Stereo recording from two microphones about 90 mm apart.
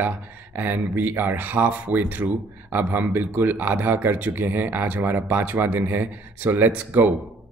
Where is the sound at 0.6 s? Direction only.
20° right (ahead or behind).